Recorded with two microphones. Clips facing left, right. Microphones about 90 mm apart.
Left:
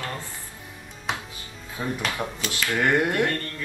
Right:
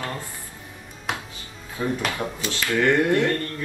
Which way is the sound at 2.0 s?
25° right (ahead or behind).